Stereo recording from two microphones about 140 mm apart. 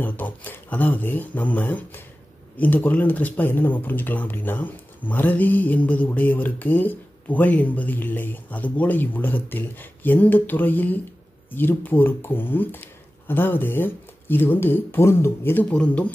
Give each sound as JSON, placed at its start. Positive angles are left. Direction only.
{"t": 0.0, "sound": "speech", "side_deg": 10}